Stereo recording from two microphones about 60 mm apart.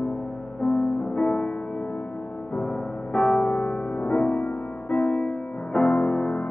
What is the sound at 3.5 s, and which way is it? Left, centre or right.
Music, left.